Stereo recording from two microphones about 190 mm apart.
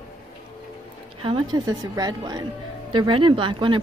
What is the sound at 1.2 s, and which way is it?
A woman's voice, 25° right (ahead or behind).